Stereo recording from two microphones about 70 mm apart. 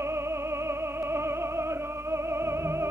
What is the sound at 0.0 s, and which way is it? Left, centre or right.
Music, right.